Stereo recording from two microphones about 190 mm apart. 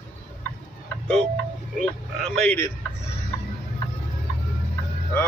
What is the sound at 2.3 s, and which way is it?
Speech, 10° left (ahead or behind).